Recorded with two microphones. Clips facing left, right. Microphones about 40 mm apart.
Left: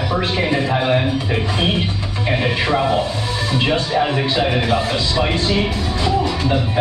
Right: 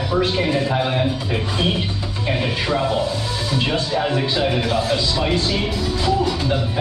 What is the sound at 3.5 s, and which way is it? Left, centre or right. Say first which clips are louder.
Speech: left 3 dB; centre.